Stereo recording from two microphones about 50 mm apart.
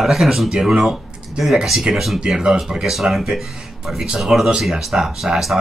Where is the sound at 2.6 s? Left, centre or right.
Centre.